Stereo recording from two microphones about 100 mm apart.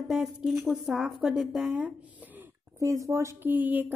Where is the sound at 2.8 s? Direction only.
30° right (ahead or behind).